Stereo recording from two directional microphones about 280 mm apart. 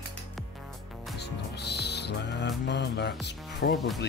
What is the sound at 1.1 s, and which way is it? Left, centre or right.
Music, left.